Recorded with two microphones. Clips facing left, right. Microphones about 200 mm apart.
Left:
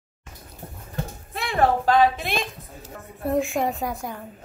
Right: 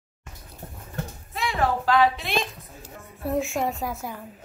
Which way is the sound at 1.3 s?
55° left (ahead or behind).